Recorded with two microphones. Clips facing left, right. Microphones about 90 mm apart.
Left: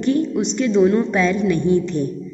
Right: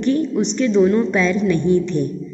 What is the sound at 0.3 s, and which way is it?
Speech, 15° left (ahead or behind).